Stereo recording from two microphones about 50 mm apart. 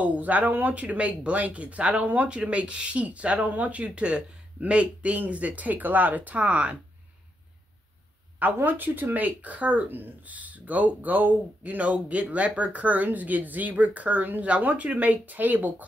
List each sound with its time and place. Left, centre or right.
0.0 s speech: right
8.6 s speech: right